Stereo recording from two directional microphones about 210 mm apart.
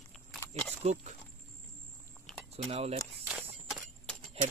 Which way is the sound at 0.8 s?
35° right (ahead or behind).